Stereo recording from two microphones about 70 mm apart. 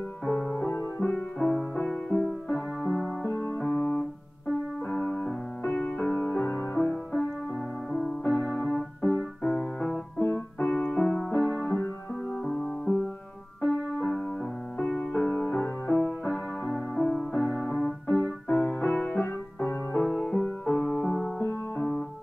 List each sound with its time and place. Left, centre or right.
0.2 s music: centre
3.3 s music: left
6.8 s music: centre
7.9 s music: centre
8.2 s keyboard: left
10.1 s music: left
10.6 s music: left
11.2 s music: left
13.6 s music: left
17.3 s music: left
18.0 s keyboard: left
18.6 s music: left
20.0 s music: centre
21.4 s music: left